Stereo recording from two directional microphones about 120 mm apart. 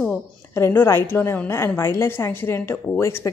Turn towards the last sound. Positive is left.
turn(degrees=20)  # may be behind; listen again after turning